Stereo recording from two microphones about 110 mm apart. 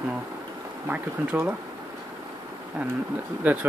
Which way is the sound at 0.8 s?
15° right (ahead or behind).